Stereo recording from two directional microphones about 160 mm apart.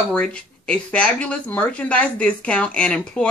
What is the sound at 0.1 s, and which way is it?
A woman's voice, 5° left (ahead or behind).